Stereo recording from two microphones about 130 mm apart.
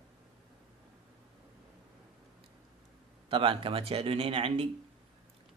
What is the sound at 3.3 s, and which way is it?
Speech, 45° right (ahead or behind).